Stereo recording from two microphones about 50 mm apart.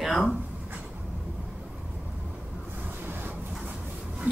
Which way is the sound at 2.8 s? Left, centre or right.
Right.